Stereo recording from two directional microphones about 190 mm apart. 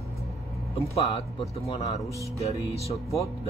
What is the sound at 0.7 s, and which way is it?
Speech, 30° left (ahead or behind).